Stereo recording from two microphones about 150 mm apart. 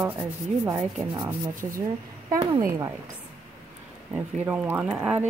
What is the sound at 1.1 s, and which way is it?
Speech, 20° right (ahead or behind).